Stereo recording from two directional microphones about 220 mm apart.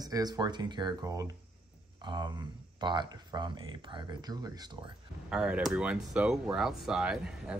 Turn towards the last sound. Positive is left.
turn(degrees=-5)  # may be behind; listen again after turning